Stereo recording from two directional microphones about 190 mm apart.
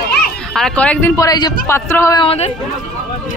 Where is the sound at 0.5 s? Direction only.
5° left (ahead or behind).